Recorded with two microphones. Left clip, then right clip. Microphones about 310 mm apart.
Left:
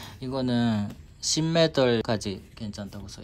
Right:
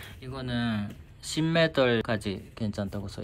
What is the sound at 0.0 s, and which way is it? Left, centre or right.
Speech, left.